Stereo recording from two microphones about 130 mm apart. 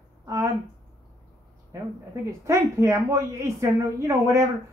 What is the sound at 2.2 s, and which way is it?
A woman's voice, 20° right (ahead or behind).